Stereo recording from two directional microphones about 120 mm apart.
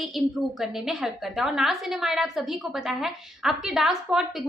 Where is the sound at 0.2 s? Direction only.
Centre (ahead or behind).